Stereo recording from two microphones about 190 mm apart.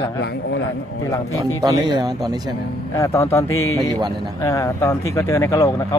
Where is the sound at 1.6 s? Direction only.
20° right (ahead or behind).